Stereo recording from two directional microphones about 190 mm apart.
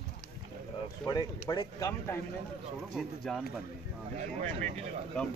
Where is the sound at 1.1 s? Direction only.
20° left (ahead or behind).